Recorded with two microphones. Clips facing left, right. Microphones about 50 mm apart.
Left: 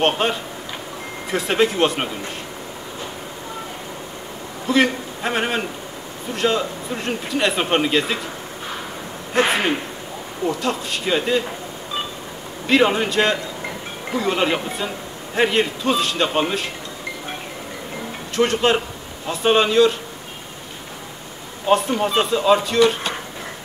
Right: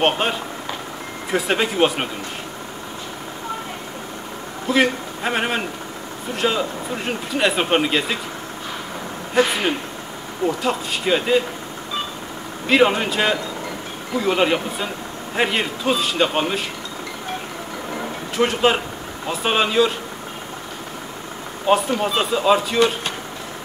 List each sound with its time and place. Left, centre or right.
0.0 s speech: centre
4.6 s a man's voice: centre
9.4 s speech: left
10.4 s speech: centre
12.6 s speech: centre
18.3 s speech: centre
21.6 s speech: centre